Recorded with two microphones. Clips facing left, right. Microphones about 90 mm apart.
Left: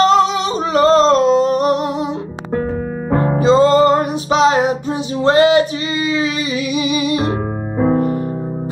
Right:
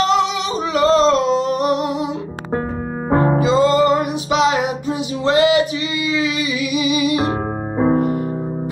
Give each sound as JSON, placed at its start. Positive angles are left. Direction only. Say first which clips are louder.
{"t": 0.0, "sound": "music", "louder": "left 4 dB", "side_deg": 40}
{"t": 3.1, "sound": "music", "louder": "right 2 dB", "side_deg": -30}
{"t": 3.3, "sound": "music", "louder": "left 7 dB", "side_deg": 35}
{"t": 7.2, "sound": "music", "louder": "left 1 dB", "side_deg": -20}